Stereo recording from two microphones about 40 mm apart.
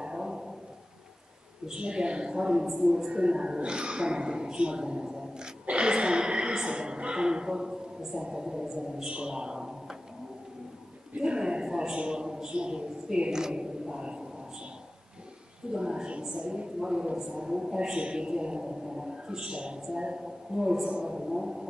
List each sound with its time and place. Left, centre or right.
0.0 s a sound: centre
1.7 s a woman's voice: right
11.1 s a man's voice: right
15.7 s a woman's voice: centre
17.5 s a man's voice: centre
17.7 s a man's voice: right
20.8 s a sound: right